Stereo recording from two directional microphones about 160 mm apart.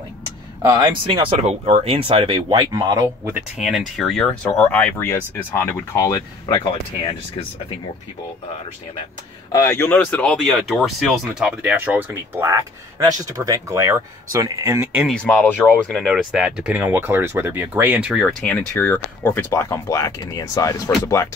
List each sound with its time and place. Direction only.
0.6 s speech: 25° right (ahead or behind)
3.5 s speech: centre (ahead or behind)
4.5 s speech: 10° left (ahead or behind); by 7.2 s 25° left (ahead or behind)
9.5 s speech: 20° left (ahead or behind); by 15.0 s 15° right (ahead or behind)
15.0 s speech: 5° left (ahead or behind); by 21.3 s 20° left (ahead or behind)